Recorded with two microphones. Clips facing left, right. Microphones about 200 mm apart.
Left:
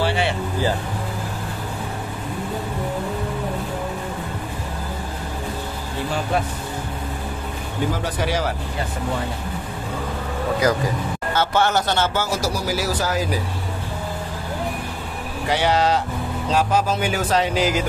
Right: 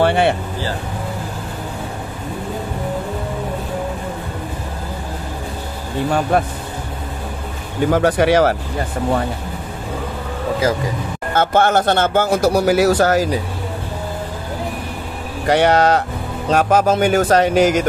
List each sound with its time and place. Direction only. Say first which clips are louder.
0.0 s vehicle: right 7 dB; 55° right (ahead or behind)
6.3 s a man's voice: right 5 dB; 55° right (ahead or behind)
7.9 s a man's voice: right 13 dB; 65° right (ahead or behind)
11.3 s a man's voice: right 5 dB; 55° right (ahead or behind); by 13.2 s 70° right (ahead or behind)
15.4 s a man's voice: right 6 dB; 60° right (ahead or behind)